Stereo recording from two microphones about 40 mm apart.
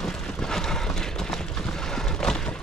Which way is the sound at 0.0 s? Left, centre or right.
Centre.